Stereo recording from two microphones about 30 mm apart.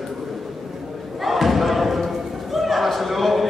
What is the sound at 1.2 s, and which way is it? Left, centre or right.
Crowd, centre.